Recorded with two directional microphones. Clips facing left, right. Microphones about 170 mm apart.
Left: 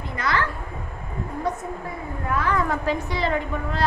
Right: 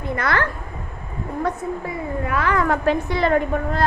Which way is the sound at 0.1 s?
55° right (ahead or behind).